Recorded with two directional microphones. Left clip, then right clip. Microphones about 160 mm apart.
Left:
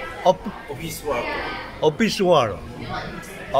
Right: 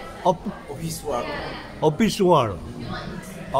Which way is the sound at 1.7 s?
25° right (ahead or behind).